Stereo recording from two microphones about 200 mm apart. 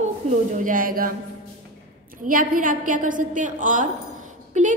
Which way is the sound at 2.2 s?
45° right (ahead or behind).